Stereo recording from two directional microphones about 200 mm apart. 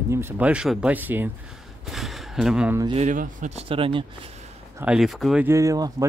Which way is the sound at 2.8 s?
30° right (ahead or behind).